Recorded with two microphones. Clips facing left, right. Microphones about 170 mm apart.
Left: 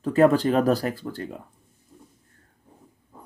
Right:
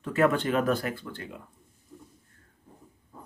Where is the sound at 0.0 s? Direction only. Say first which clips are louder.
Left 6 dB; 35° left (ahead or behind).